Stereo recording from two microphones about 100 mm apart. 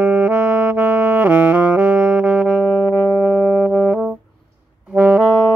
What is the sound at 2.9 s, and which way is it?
Music, 20° left (ahead or behind).